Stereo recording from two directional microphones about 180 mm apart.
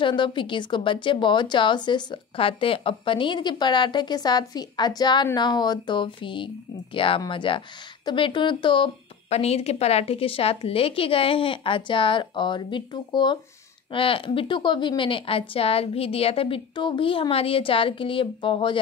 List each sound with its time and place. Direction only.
0.0 s speech: 25° left (ahead or behind)